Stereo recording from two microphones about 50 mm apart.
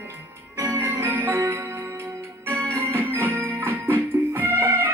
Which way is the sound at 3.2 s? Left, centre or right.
Right.